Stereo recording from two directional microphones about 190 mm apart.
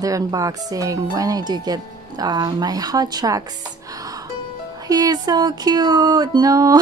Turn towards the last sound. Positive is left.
turn(degrees=-20)  # may be behind; listen again after turning